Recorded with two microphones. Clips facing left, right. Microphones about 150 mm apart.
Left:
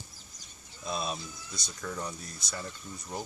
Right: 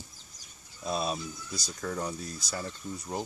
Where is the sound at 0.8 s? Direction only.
5° right (ahead or behind).